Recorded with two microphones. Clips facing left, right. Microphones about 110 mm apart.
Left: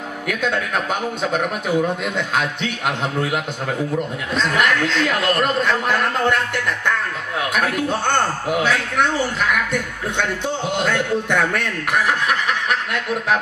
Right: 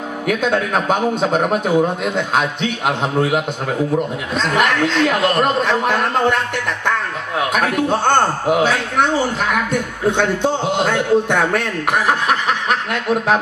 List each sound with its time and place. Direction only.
0.3 s a man's voice: 25° right (ahead or behind)
4.6 s a man's voice: 20° right (ahead or behind)
7.5 s a man's voice: 25° right (ahead or behind)